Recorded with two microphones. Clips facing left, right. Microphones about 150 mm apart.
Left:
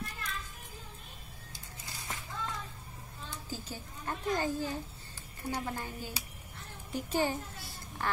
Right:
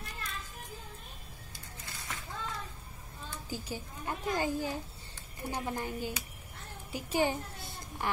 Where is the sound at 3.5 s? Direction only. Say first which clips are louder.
Right 4 dB; 15° right (ahead or behind).